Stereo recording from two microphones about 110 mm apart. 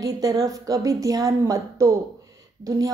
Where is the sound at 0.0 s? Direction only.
35° right (ahead or behind).